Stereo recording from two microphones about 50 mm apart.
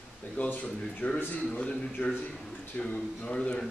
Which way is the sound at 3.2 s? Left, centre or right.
Left.